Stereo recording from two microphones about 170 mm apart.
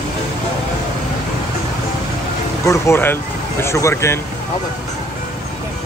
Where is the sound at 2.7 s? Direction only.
15° left (ahead or behind).